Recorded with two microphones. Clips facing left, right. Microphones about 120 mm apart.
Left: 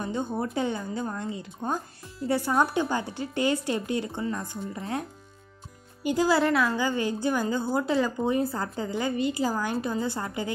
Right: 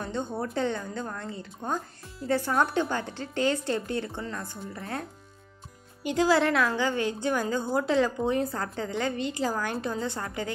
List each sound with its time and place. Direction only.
0.0 s speech: 10° left (ahead or behind)
6.0 s a woman's voice: 5° left (ahead or behind)